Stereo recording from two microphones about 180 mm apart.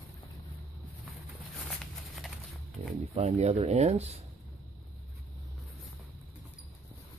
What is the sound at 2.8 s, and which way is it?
Speech, 35° right (ahead or behind).